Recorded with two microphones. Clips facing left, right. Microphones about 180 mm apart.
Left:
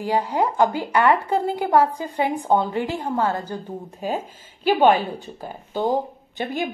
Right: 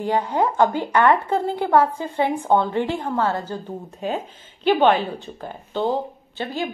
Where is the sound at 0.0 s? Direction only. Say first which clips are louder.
Right 1 dB; 10° left (ahead or behind).